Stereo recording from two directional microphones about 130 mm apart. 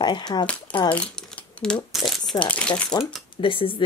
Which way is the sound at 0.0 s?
35° left (ahead or behind).